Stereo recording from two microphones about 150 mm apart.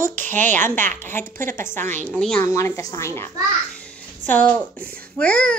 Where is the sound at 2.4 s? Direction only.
20° left (ahead or behind).